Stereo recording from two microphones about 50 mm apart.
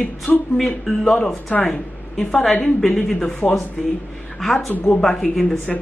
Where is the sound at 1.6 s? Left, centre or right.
Centre.